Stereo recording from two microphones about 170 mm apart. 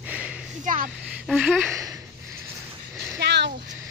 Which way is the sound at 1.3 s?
Centre (ahead or behind).